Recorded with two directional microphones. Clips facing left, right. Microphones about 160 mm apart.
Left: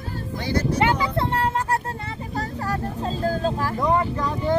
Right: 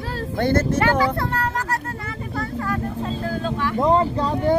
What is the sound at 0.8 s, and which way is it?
Speech, 20° left (ahead or behind).